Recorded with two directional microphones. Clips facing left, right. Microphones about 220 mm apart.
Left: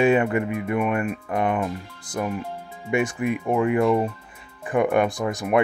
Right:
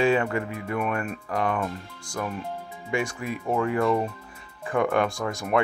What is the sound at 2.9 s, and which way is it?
Speech, 20° left (ahead or behind).